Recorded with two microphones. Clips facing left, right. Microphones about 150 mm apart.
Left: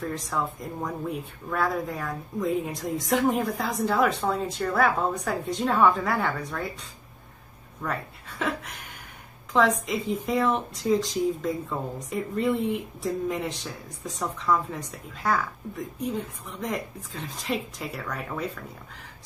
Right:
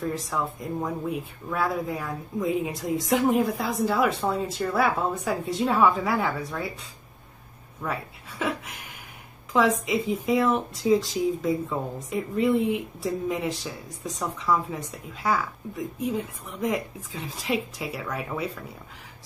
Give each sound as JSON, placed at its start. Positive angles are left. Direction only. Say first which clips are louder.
{"t": 0.0, "sound": "speech", "louder": "right 1 dB", "side_deg": 0}